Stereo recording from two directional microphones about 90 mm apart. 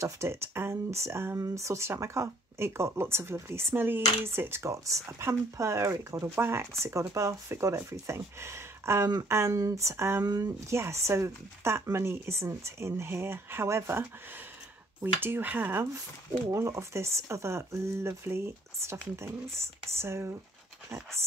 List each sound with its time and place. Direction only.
0.0 s speech: 30° right (ahead or behind)
10.2 s speech: 45° right (ahead or behind)
10.7 s speech: 30° right (ahead or behind)
15.1 s speech: 25° right (ahead or behind)